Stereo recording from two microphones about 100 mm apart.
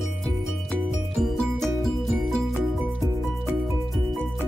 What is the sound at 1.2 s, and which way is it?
Music, 5° left (ahead or behind).